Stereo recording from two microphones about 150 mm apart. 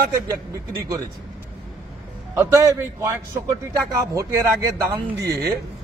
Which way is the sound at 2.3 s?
20° right (ahead or behind).